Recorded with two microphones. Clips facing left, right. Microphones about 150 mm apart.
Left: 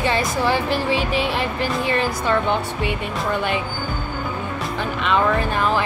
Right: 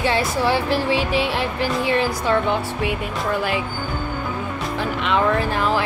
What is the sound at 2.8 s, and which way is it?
Music, 5° right (ahead or behind).